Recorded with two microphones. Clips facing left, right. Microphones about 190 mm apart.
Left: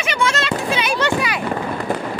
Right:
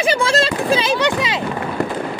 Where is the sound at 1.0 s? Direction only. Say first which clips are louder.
Right 1 dB; 20° right (ahead or behind).